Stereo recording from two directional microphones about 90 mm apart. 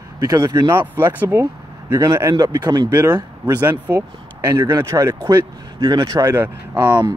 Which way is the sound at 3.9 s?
25° right (ahead or behind).